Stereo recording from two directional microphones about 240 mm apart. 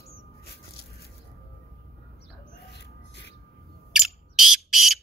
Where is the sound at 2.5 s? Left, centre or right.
Left.